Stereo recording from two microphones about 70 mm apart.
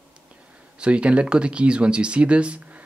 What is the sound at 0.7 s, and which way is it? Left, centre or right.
Speech, centre.